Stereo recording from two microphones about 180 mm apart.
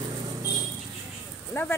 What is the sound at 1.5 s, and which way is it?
Speech, 20° left (ahead or behind).